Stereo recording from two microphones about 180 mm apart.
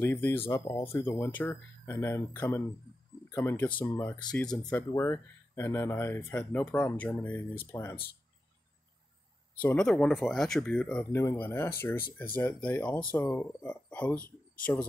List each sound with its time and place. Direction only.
0.0 s speech: 10° left (ahead or behind)
9.6 s speech: 5° left (ahead or behind)